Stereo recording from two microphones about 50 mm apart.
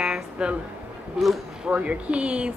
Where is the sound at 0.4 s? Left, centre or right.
Right.